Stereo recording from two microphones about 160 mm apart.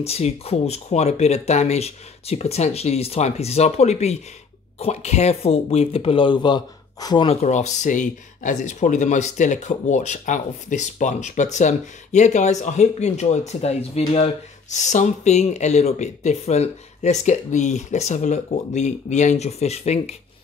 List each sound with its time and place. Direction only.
0.0 s speech: 40° left (ahead or behind)
7.2 s speech: 45° left (ahead or behind)